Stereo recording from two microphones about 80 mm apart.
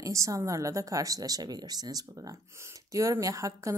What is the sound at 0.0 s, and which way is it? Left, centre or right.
A woman's voice, right.